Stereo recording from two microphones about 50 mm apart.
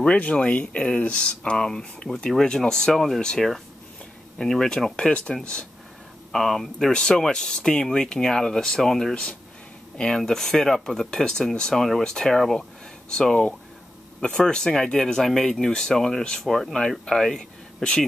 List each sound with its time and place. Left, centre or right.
0.0 s speech: left; by 5.1 s centre
5.4 s speech: centre
6.3 s speech: centre
6.9 s speech: centre